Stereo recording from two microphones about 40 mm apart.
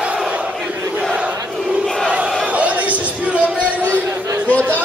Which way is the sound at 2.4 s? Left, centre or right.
Right.